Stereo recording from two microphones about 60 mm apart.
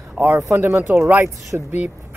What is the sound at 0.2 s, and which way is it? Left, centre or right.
Speech, right.